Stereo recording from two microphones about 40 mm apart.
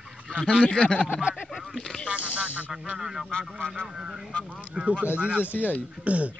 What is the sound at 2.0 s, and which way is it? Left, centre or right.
Speech, right.